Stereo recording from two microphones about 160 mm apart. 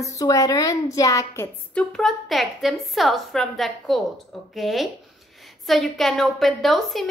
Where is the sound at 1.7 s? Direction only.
Centre (ahead or behind).